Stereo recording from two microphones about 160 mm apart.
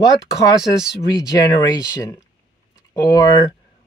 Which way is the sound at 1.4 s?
20° left (ahead or behind).